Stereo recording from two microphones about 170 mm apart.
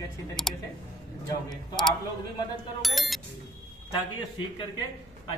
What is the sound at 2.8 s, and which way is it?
Speech, centre (ahead or behind).